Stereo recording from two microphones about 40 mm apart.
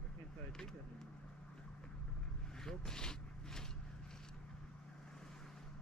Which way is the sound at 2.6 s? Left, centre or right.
Centre.